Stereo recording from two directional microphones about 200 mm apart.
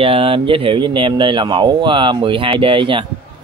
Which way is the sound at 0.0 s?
25° right (ahead or behind).